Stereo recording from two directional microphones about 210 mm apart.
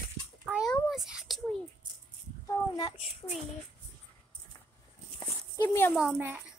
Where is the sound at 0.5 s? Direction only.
Centre (ahead or behind).